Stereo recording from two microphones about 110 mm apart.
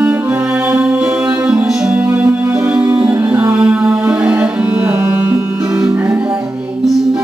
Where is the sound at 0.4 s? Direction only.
10° right (ahead or behind).